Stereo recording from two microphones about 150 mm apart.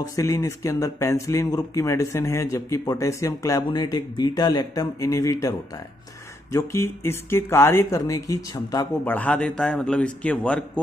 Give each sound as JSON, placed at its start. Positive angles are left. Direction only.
{"t": 0.0, "sound": "speech", "side_deg": 20}
{"t": 6.5, "sound": "speech", "side_deg": 20}
{"t": 9.0, "sound": "speech", "side_deg": 10}